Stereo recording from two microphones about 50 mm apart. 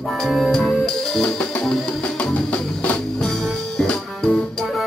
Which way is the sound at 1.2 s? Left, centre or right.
Left.